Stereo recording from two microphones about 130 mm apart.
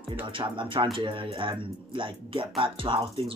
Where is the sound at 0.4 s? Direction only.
40° right (ahead or behind).